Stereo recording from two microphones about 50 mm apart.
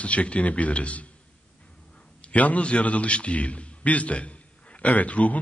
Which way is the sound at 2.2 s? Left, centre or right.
Left.